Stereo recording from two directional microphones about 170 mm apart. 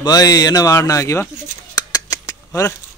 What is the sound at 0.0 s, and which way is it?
Speech, 20° left (ahead or behind).